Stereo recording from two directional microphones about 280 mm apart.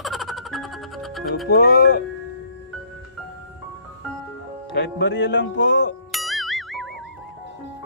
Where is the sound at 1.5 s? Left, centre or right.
Left.